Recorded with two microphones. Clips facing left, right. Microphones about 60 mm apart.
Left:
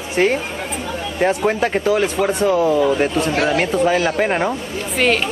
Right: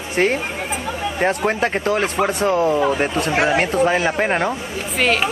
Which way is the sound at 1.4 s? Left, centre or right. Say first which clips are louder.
Left 2 dB; centre.